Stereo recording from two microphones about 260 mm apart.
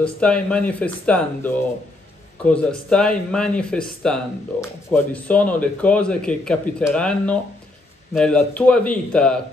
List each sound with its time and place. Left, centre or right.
0.0 s speech: centre